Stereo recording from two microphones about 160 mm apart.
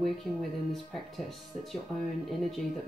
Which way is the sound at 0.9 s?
Centre (ahead or behind).